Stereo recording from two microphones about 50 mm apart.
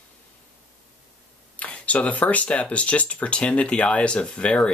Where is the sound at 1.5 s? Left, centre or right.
Left.